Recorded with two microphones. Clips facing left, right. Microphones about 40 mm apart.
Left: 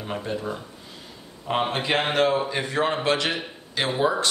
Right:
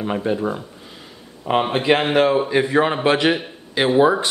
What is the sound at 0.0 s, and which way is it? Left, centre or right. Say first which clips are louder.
A man's voice: right 8 dB; right.